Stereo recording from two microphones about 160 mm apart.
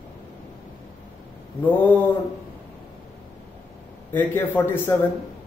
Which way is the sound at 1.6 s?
10° left (ahead or behind).